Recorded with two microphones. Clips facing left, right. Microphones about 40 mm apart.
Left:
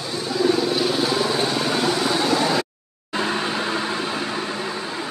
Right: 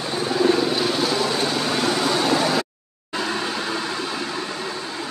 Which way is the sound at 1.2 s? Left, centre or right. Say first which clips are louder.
Left 1 dB; centre.